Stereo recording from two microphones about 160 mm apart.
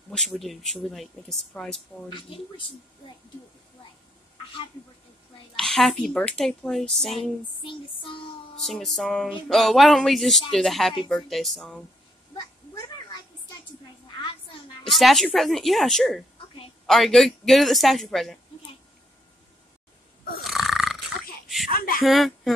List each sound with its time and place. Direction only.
0.1 s speech: 5° left (ahead or behind)
2.0 s music: 30° left (ahead or behind)
5.6 s speech: centre (ahead or behind)
7.6 s music: 30° left (ahead or behind)
8.5 s speech: centre (ahead or behind)
14.9 s speech: centre (ahead or behind)
20.4 s burping: centre (ahead or behind)
21.6 s a sound: 65° left (ahead or behind)
22.0 s speech: centre (ahead or behind)